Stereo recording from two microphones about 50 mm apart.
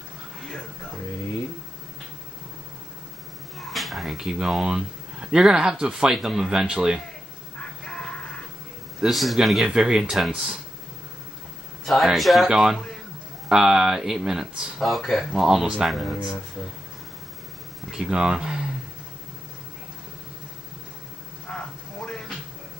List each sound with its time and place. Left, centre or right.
3.5 s speech: centre
7.8 s music: centre
9.0 s speech: centre
11.8 s speech: centre
14.8 s speech: centre
15.4 s speech: centre
17.9 s speech: centre
21.5 s a sound: centre